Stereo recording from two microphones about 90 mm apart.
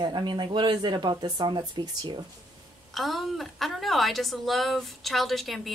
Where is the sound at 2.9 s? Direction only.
Centre (ahead or behind).